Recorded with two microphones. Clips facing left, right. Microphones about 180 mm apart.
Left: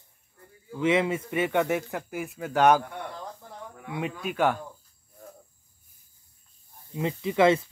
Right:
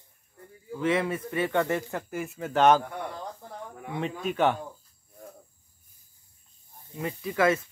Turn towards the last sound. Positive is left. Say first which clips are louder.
# left 3 dB
turn(degrees=25)  # may be behind; listen again after turning